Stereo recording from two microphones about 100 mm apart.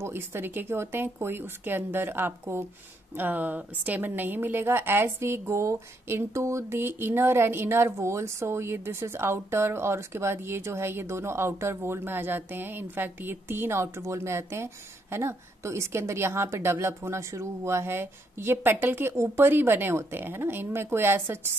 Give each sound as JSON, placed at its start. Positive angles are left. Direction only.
{"t": 0.0, "sound": "a woman's voice", "side_deg": -25}